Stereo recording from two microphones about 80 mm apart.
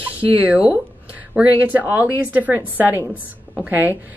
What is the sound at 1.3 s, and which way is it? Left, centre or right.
A woman's voice, centre.